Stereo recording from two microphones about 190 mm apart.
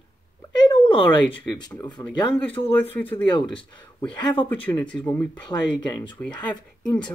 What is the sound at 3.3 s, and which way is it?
Speech, 25° left (ahead or behind).